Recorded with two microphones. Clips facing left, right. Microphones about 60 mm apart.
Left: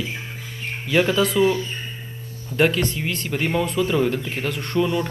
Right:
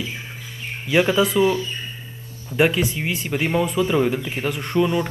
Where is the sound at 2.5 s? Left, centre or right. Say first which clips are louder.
Right 1 dB; centre.